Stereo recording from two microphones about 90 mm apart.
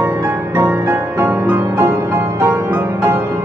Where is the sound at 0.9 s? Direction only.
25° right (ahead or behind).